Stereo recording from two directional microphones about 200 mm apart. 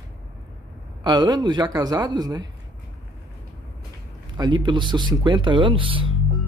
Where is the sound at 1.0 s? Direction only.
20° right (ahead or behind).